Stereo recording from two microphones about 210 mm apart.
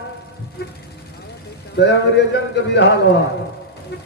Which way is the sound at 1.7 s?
55° left (ahead or behind).